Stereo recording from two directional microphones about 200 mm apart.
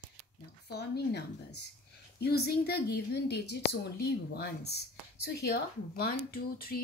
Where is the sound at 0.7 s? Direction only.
55° left (ahead or behind).